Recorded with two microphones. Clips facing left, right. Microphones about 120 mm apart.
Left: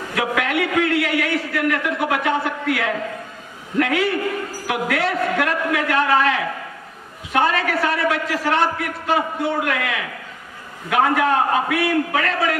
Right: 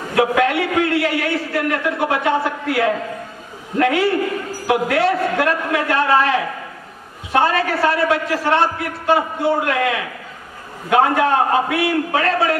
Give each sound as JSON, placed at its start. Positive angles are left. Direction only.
{"t": 0.1, "sound": "a man's voice", "side_deg": -30}